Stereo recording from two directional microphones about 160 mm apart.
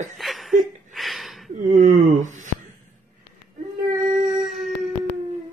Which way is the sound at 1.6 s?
55° right (ahead or behind).